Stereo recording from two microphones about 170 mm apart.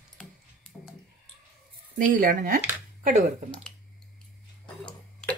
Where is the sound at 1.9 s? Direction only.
55° right (ahead or behind).